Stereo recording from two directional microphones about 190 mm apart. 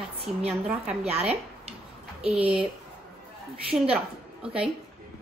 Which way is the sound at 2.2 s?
5° right (ahead or behind).